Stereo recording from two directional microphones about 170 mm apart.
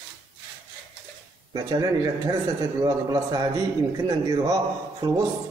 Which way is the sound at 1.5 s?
20° right (ahead or behind).